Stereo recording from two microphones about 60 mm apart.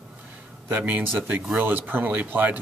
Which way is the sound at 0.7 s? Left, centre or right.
Right.